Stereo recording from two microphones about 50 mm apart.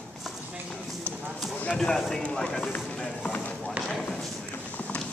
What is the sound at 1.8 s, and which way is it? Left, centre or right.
Speech, centre.